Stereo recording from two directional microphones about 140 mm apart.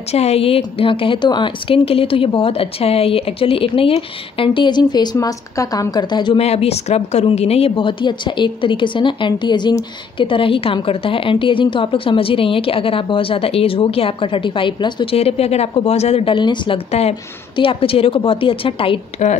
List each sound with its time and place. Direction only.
0.1 s a woman's voice: 50° left (ahead or behind); by 6.3 s 30° left (ahead or behind)
6.3 s a woman's voice: 45° left (ahead or behind)